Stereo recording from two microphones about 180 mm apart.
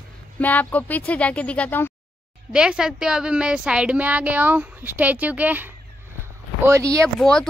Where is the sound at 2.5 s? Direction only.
5° right (ahead or behind).